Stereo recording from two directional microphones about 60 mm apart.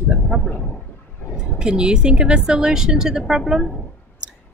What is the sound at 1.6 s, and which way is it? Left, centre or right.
A woman's voice, centre.